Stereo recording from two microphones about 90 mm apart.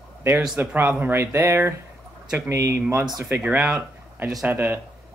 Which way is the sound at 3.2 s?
20° right (ahead or behind).